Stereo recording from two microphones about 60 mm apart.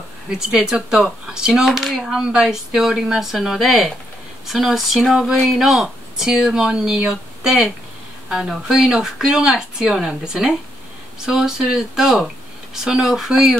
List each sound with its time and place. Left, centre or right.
0.3 s speech: centre